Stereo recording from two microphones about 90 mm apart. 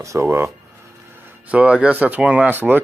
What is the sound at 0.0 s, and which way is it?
Speech, 35° right (ahead or behind).